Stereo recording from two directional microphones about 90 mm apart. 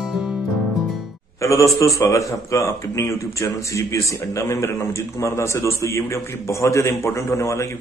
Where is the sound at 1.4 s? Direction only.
35° left (ahead or behind).